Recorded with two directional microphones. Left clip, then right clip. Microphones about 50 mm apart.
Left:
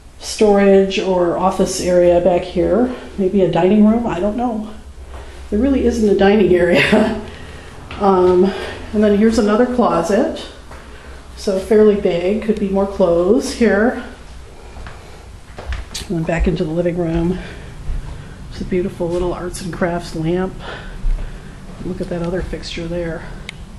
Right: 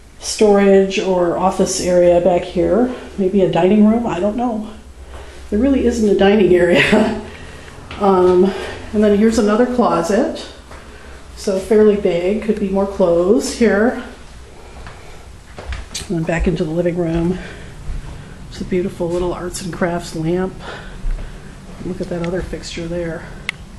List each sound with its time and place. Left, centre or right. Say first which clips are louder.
0.2 s speech: even; right
1.5 s speech: even; right
5.6 s speech: even; right
11.5 s speech: even; centre
15.9 s speech: even; right
18.7 s speech: even; right
22.2 s speech: even; centre
22.8 s speech: even; centre